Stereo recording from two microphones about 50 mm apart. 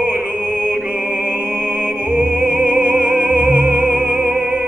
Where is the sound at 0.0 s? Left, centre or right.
Right.